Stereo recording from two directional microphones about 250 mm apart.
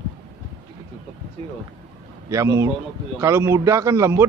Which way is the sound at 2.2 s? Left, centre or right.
Centre.